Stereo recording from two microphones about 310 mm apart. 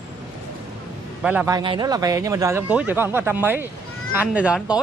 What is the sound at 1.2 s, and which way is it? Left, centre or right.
Speech, centre.